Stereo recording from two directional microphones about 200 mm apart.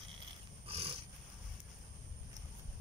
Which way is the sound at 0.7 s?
30° right (ahead or behind).